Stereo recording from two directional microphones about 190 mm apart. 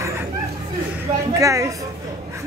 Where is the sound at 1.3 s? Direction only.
15° right (ahead or behind).